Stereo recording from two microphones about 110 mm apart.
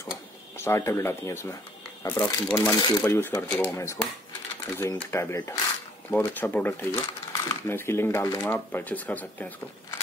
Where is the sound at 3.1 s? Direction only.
20° left (ahead or behind).